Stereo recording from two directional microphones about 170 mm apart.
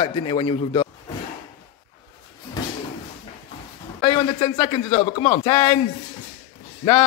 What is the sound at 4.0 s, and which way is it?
A man's voice, 35° left (ahead or behind).